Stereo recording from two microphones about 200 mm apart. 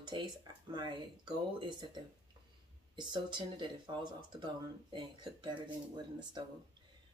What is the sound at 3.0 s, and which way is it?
Speech, 25° right (ahead or behind).